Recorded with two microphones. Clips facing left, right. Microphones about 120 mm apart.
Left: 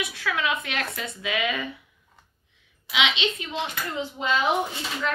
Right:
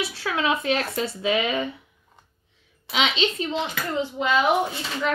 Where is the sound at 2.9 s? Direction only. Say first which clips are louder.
Right 2 dB; 40° right (ahead or behind).